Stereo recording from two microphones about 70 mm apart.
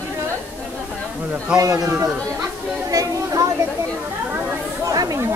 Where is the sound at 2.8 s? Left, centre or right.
Right.